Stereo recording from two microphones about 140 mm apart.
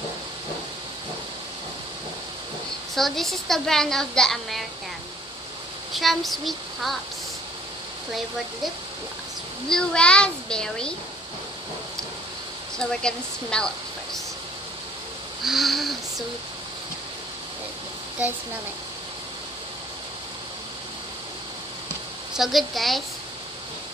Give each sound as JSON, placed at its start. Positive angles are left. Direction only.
{"t": 3.0, "sound": "a woman's voice", "side_deg": 0}
{"t": 5.9, "sound": "a woman's voice", "side_deg": 0}
{"t": 9.7, "sound": "a woman's voice", "side_deg": 5}
{"t": 12.7, "sound": "a woman's voice", "side_deg": 5}
{"t": 15.4, "sound": "a woman's voice", "side_deg": 0}
{"t": 22.3, "sound": "a woman's voice", "side_deg": 0}